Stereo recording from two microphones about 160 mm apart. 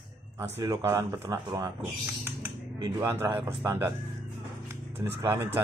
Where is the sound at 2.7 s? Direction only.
20° right (ahead or behind).